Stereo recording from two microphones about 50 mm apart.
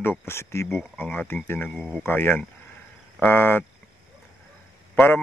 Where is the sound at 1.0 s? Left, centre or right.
Left.